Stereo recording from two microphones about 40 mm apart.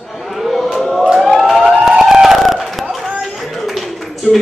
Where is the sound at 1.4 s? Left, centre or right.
Centre.